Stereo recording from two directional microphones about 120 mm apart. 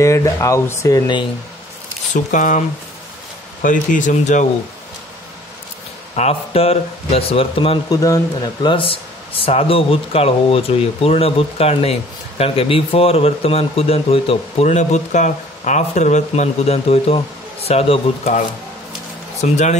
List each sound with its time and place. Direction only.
0.0 s speech: 25° left (ahead or behind)
2.1 s speech: 90° left
3.6 s speech: 90° left
6.1 s speech: 60° left (ahead or behind)
7.9 s speech: 30° left (ahead or behind)
8.6 s speech: 50° left (ahead or behind)
19.4 s speech: 80° left